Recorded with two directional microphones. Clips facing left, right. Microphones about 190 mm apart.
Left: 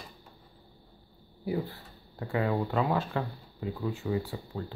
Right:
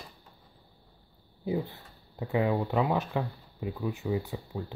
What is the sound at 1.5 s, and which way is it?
Speech, 20° right (ahead or behind).